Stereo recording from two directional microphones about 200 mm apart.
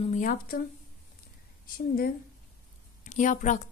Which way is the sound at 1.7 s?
45° left (ahead or behind).